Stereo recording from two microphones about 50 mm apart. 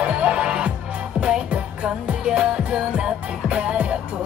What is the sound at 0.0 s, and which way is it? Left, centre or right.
Music, right.